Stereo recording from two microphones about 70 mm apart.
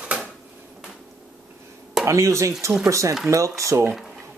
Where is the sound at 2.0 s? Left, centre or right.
Right.